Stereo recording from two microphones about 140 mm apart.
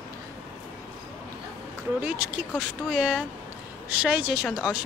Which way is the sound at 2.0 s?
10° right (ahead or behind).